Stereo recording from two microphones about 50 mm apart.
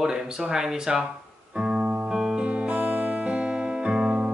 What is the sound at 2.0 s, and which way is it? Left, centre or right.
Music, centre.